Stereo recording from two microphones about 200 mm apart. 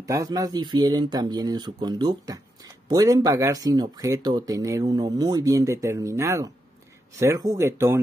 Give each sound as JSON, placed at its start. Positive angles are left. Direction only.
{"t": 0.0, "sound": "speech", "side_deg": -15}